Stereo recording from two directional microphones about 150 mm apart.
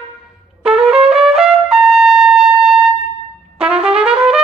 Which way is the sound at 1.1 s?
5° right (ahead or behind).